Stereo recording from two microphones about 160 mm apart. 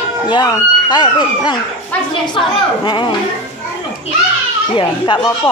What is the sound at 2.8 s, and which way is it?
Speech, 30° left (ahead or behind).